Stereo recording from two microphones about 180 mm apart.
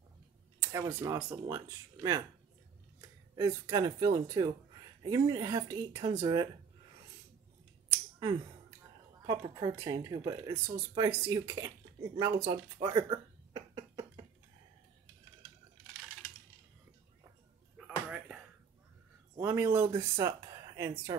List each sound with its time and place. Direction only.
0.6 s a sound: 15° right (ahead or behind)
0.9 s speech: 20° right (ahead or behind)
8.2 s finger snapping: 20° right (ahead or behind)
9.2 s speech: 20° right (ahead or behind)
12.9 s a sound: 25° right (ahead or behind)
17.7 s bouncing: 5° right (ahead or behind)
19.3 s speech: 15° right (ahead or behind)